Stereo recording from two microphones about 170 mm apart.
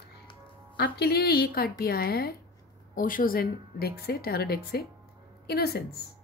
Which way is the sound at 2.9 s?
55° left (ahead or behind).